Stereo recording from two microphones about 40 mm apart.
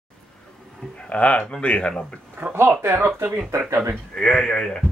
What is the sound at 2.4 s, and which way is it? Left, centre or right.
Speech, right.